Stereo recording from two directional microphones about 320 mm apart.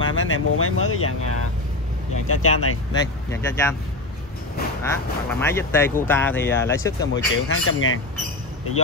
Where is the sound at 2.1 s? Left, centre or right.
Left.